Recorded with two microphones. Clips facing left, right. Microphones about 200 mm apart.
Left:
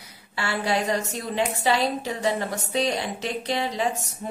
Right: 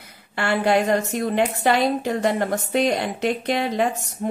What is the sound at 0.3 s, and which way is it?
Speech, 55° right (ahead or behind).